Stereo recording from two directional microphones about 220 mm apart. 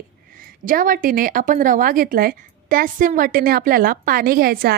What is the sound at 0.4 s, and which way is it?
Speech, 40° right (ahead or behind).